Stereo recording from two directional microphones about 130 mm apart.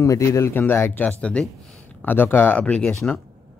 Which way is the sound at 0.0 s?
25° left (ahead or behind).